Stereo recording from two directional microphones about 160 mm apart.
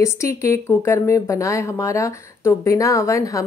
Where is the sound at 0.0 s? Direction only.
20° left (ahead or behind).